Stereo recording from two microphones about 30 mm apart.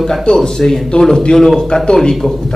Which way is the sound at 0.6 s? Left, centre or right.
Left.